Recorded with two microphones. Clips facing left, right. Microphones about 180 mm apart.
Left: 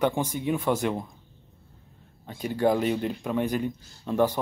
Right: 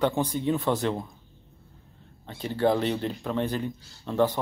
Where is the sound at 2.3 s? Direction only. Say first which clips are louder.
Even; 10° left (ahead or behind).